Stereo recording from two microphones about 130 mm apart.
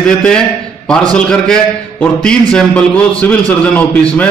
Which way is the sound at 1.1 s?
5° left (ahead or behind).